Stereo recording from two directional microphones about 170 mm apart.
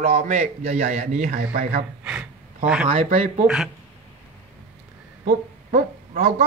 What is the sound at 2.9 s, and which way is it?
Speech, 35° right (ahead or behind).